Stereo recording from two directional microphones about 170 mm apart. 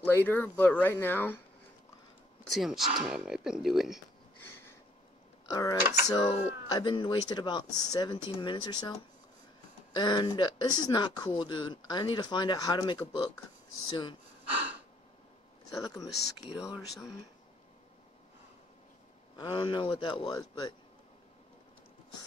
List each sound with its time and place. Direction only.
0.0 s speech: 10° left (ahead or behind)
2.5 s speech: centre (ahead or behind)
5.5 s speech: 20° left (ahead or behind)
9.9 s speech: 25° left (ahead or behind)
15.8 s speech: 25° left (ahead or behind)
16.5 s speech: 5° right (ahead or behind)
19.3 s speech: 30° left (ahead or behind)